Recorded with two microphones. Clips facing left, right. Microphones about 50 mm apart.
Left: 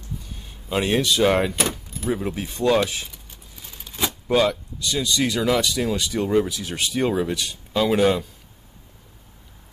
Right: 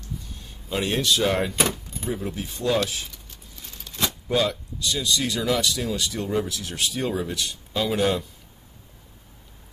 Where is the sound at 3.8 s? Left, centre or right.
Centre.